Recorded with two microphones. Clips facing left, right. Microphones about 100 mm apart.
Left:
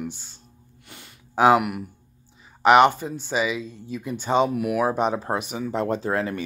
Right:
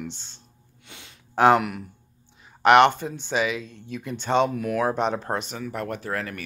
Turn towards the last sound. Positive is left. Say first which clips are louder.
# left 6 dB
turn(degrees=20)  # may be behind; listen again after turning